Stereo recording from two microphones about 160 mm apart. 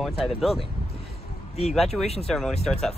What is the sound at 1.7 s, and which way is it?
Speech, centre (ahead or behind).